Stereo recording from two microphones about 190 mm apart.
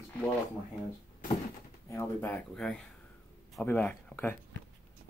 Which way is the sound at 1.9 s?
10° left (ahead or behind).